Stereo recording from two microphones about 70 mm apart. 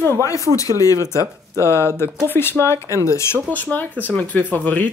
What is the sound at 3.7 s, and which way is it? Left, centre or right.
Speech, left.